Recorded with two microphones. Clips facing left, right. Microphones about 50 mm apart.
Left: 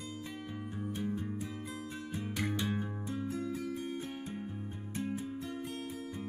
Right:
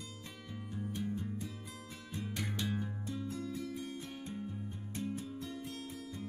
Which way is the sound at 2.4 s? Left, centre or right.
Left.